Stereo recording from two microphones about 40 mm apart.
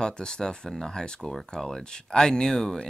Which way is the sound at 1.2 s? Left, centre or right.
Centre.